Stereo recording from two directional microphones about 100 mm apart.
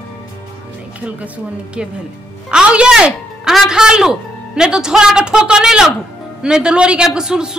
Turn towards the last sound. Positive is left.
turn(degrees=-5)  # may be behind; listen again after turning